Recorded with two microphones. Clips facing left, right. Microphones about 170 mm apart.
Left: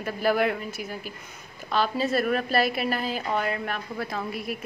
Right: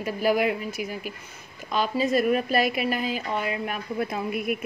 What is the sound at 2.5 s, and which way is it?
Speech, 40° left (ahead or behind).